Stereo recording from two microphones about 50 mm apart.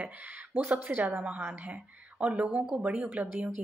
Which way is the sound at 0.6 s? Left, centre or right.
Right.